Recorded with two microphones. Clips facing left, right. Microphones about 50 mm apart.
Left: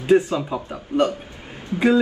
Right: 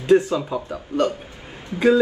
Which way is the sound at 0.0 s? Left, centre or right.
Left.